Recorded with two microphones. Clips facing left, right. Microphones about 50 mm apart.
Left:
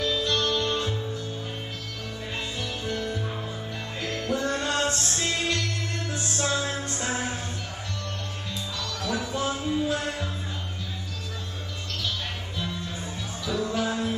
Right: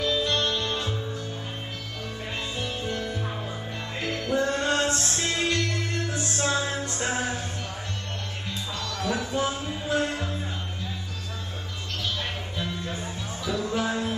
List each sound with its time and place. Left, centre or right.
0.0 s music: right
2.6 s music: right
8.7 s music: right
12.5 s music: right